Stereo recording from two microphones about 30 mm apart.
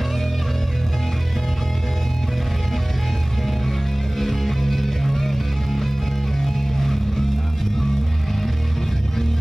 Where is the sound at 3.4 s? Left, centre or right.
Centre.